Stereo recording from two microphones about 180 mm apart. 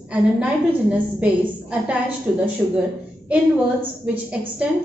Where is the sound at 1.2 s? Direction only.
5° right (ahead or behind).